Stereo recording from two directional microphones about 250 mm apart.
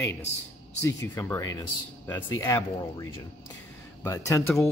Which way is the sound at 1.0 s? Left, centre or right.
Centre.